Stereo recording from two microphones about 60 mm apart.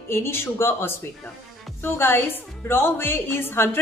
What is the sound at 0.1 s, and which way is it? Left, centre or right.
A woman's voice, left.